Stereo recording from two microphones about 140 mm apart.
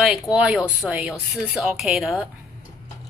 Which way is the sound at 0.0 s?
Centre (ahead or behind).